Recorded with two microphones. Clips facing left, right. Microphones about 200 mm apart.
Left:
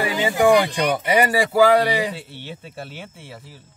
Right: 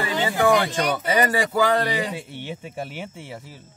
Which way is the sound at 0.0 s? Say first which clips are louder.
Left 3 dB; 15° left (ahead or behind).